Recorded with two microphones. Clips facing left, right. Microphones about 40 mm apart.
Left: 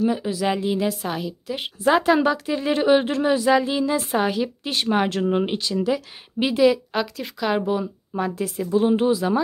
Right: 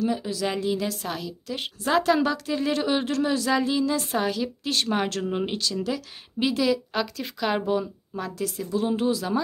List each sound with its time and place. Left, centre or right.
0.0 s a woman's voice: centre
8.1 s speech: left